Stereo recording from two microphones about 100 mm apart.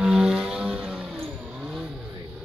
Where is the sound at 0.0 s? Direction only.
5° right (ahead or behind).